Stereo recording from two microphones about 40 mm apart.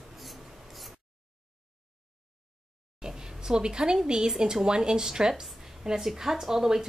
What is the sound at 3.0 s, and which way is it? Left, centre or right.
A woman's voice, centre.